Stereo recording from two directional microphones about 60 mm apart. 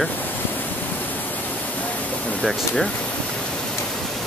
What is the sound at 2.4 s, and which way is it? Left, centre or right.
Speech, centre.